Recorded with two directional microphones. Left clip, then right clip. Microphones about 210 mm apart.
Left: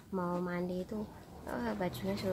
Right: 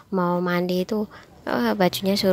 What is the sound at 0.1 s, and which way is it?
Speech, 40° right (ahead or behind).